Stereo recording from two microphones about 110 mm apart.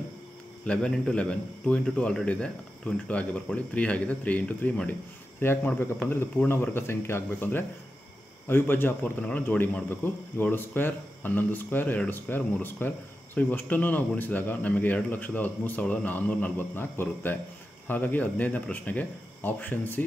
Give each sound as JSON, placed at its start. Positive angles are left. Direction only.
{"t": 0.7, "sound": "speech", "side_deg": 5}